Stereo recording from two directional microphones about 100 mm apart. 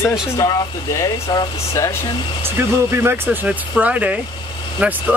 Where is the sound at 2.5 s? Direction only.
25° right (ahead or behind).